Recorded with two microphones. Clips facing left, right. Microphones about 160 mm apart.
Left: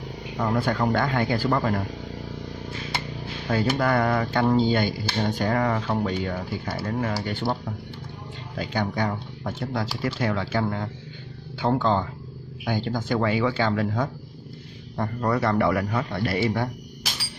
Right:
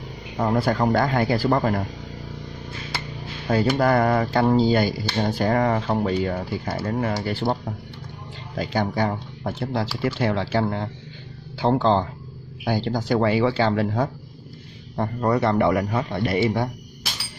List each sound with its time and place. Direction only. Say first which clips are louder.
0.4 s speech: right 3 dB; 40° right (ahead or behind)
3.4 s speech: right 4 dB; 35° right (ahead or behind)
8.5 s a man's voice: right 3 dB; 40° right (ahead or behind); by 16.6 s 20° right (ahead or behind)